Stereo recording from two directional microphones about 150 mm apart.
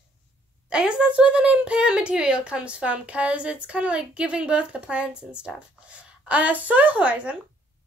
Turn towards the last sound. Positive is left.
turn(degrees=-10)  # may be behind; listen again after turning